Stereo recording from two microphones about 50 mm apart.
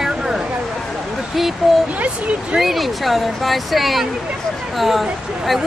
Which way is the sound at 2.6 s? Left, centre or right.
Centre.